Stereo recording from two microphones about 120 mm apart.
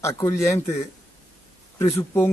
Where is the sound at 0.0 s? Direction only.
25° left (ahead or behind).